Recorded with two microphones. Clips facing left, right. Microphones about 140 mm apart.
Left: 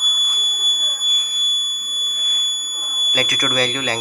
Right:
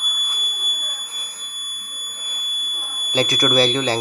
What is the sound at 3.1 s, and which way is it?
Speech, 30° right (ahead or behind).